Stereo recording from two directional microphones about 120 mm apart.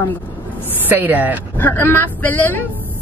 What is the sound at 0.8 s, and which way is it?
Speech, 15° right (ahead or behind).